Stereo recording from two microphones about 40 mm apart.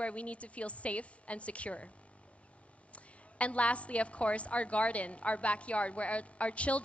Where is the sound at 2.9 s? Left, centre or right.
Left.